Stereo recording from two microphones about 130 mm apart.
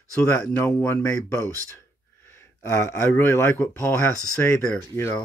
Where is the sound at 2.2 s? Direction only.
20° left (ahead or behind).